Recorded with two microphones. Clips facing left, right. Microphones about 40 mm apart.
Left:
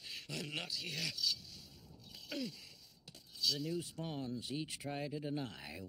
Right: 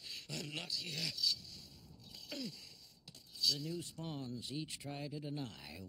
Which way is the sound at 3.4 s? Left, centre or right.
Centre.